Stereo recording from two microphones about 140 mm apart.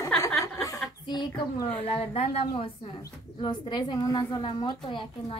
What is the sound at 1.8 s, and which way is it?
A woman's voice, 45° left (ahead or behind).